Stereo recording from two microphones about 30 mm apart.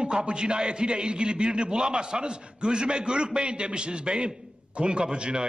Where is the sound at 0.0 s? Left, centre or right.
Right.